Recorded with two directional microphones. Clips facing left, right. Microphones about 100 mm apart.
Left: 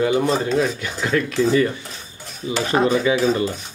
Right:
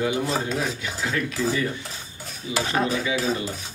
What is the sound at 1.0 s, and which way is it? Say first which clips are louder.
Speech: left 6 dB; 75° left (ahead or behind).